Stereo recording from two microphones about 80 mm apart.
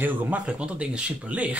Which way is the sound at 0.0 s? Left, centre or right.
Centre.